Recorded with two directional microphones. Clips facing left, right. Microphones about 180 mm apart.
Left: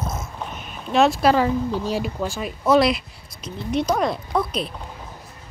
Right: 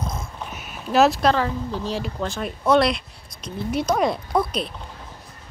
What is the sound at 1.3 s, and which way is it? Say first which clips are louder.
Speech: left 4 dB; 10° left (ahead or behind).